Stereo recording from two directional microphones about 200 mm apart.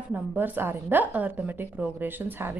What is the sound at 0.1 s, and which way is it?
A woman's voice, 10° right (ahead or behind).